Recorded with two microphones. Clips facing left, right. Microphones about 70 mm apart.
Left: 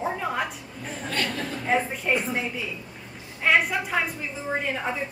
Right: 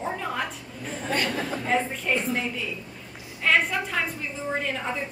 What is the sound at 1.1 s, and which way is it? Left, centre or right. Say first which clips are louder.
Speech: right 2 dB; centre.